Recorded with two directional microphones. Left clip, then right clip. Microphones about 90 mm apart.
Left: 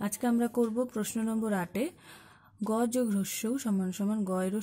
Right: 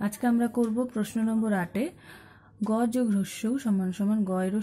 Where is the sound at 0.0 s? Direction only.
25° left (ahead or behind).